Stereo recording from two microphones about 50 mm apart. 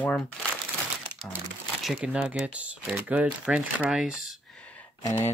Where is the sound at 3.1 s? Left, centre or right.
Right.